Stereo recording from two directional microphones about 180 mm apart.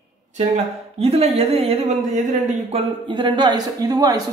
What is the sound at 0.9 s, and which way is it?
Speech, 35° right (ahead or behind).